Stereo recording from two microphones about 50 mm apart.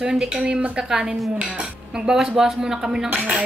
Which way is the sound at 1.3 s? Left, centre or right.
Right.